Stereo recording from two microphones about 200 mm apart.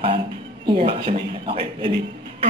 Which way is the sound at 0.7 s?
25° right (ahead or behind).